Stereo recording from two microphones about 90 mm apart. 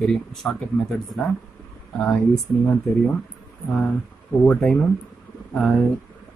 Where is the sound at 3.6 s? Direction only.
15° left (ahead or behind).